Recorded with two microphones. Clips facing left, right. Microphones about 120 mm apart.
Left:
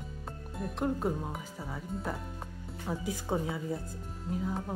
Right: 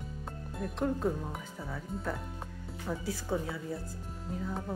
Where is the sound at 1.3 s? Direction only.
10° left (ahead or behind).